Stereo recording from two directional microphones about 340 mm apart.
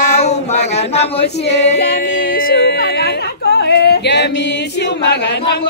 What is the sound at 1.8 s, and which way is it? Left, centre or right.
Speech, left.